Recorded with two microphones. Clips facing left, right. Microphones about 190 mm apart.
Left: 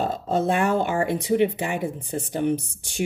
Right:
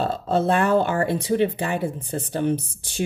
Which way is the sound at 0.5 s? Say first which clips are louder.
Right 3 dB; 15° left (ahead or behind).